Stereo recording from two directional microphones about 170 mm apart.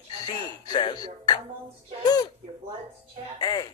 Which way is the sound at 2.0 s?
25° left (ahead or behind).